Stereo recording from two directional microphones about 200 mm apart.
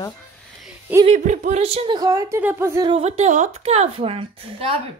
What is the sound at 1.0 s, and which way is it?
A woman's voice, 35° right (ahead or behind).